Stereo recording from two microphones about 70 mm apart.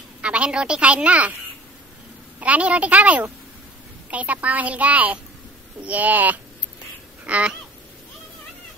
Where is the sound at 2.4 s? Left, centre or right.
Centre.